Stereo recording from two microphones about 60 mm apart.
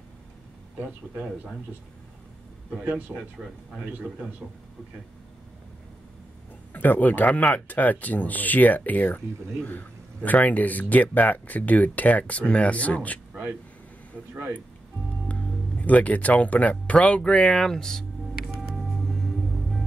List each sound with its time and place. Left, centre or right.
0.7 s speech: right
2.8 s speech: right
3.2 s speech: centre
6.7 s speech: left
15.2 s speech: left; by 18.0 s centre
18.6 s music: centre